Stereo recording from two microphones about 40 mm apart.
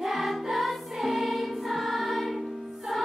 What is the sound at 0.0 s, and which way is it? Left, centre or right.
Music, centre.